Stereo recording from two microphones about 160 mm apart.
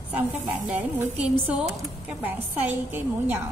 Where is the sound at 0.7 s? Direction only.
10° right (ahead or behind).